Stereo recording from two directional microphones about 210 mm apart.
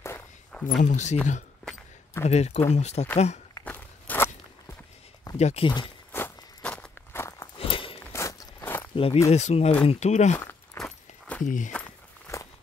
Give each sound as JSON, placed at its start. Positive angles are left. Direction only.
{"t": 0.0, "sound": "walk", "side_deg": 10}
{"t": 0.8, "sound": "speech", "side_deg": 35}
{"t": 1.6, "sound": "a sound", "side_deg": 5}
{"t": 2.2, "sound": "speech", "side_deg": 30}
{"t": 3.5, "sound": "walk", "side_deg": 10}
{"t": 5.4, "sound": "speech", "side_deg": 30}
{"t": 6.1, "sound": "walk", "side_deg": 10}
{"t": 7.5, "sound": "walk", "side_deg": 25}
{"t": 8.0, "sound": "a sound", "side_deg": 15}
{"t": 8.9, "sound": "speech", "side_deg": 25}
{"t": 10.3, "sound": "walk", "side_deg": 10}
{"t": 11.4, "sound": "speech", "side_deg": 35}
{"t": 11.7, "sound": "walk", "side_deg": 10}